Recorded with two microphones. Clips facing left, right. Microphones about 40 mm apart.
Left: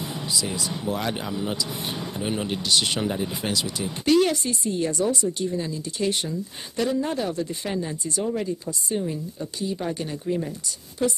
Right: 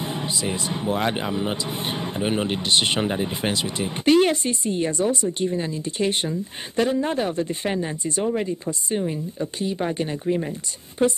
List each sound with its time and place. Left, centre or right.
0.0 s speech: right